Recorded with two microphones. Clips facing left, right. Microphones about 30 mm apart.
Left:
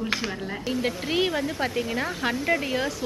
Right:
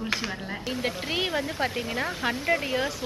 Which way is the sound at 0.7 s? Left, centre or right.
Centre.